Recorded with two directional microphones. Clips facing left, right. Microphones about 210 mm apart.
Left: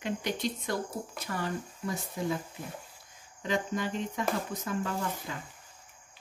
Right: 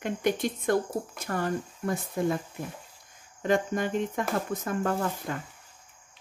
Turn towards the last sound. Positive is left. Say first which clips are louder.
# right 6 dB
turn(degrees=-50)  # may be behind; listen again after turning